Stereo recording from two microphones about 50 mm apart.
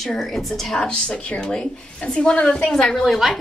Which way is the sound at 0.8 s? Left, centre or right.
Left.